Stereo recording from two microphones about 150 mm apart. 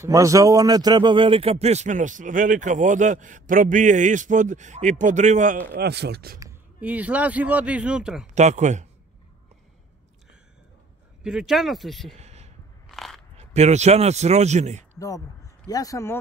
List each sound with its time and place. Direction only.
0.0 s a man's voice: 20° right (ahead or behind); by 5.6 s 55° right (ahead or behind)
5.7 s speech: 90° right
6.8 s a man's voice: 10° right (ahead or behind)
8.4 s a man's voice: 50° right (ahead or behind)
11.2 s speech: 5° right (ahead or behind)
12.2 s a sound: 45° right (ahead or behind)
12.8 s biting: centre (ahead or behind)
13.4 s a man's voice: 45° right (ahead or behind)
15.0 s speech: 20° left (ahead or behind)